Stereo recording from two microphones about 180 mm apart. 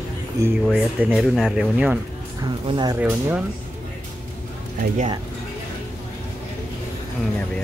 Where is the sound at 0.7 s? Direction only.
5° right (ahead or behind).